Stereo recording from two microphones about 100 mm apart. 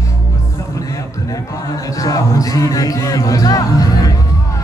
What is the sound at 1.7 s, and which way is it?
Speech, 40° left (ahead or behind).